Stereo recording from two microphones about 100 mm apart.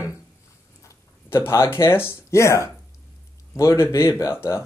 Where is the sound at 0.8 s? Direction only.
25° left (ahead or behind).